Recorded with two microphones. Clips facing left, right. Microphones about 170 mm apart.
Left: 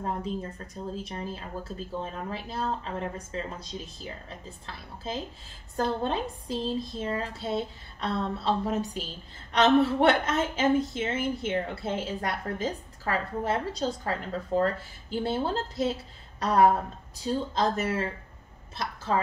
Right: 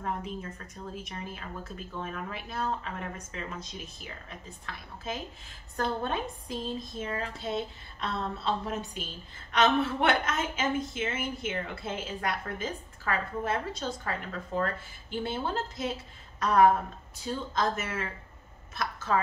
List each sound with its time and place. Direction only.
0.0 s a woman's voice: 30° left (ahead or behind)